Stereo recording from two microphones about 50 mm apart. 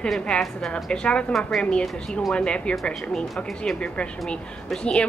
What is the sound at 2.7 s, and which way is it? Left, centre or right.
Speech, centre.